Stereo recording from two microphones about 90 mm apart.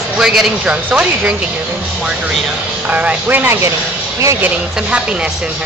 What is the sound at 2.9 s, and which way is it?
Speech, 15° right (ahead or behind).